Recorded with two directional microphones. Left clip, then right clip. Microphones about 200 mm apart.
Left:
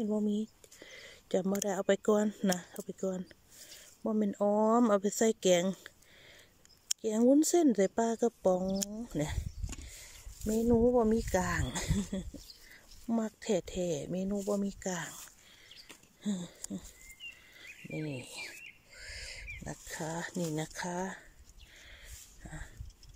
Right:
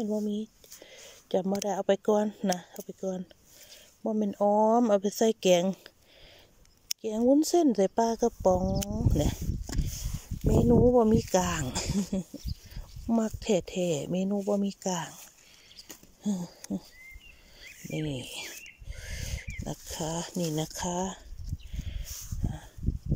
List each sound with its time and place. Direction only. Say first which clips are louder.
0.0 s speech: right 2 dB; 5° left (ahead or behind)
7.0 s speech: right 2 dB; centre (ahead or behind)
9.7 s a sound: right 9 dB; 35° right (ahead or behind)
10.4 s speech: right 5 dB; 5° right (ahead or behind)
16.2 s speech: right 4 dB; 5° right (ahead or behind)
18.0 s speech: right 5 dB; 10° right (ahead or behind)
18.9 s a sound: right 3 dB; 15° right (ahead or behind)
19.6 s speech: right 7 dB; 10° right (ahead or behind)